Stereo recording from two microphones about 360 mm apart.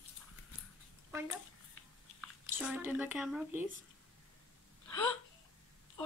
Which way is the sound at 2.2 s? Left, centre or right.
Centre.